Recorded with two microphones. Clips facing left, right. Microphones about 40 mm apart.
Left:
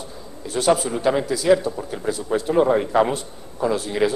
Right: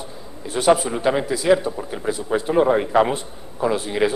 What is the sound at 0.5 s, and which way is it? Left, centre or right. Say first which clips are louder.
Speech: right 2 dB; right.